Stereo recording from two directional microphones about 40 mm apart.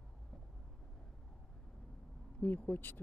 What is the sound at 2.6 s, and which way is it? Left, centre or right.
Speech, left.